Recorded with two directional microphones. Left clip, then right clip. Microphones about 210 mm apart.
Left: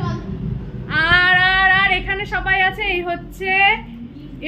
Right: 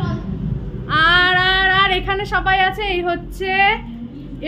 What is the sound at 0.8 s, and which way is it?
Child singing, 10° right (ahead or behind).